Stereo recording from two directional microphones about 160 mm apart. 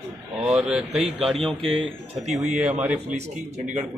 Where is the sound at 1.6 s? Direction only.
35° right (ahead or behind).